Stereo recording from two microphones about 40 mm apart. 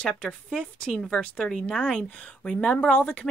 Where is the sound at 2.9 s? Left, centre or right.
Left.